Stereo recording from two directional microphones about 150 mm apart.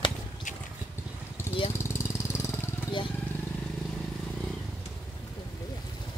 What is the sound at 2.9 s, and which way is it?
Vehicle, 30° left (ahead or behind).